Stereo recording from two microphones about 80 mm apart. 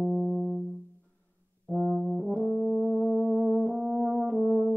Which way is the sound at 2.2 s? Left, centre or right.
Centre.